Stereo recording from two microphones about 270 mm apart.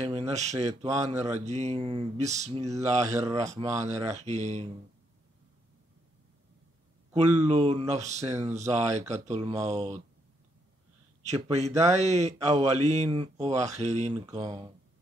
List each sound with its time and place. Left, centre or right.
0.3 s speech: right
0.8 s speech: centre
1.3 s speech: right
3.2 s speech: centre
4.0 s speech: right
7.2 s speech: right
8.2 s speech: centre
9.1 s speech: right
11.2 s speech: right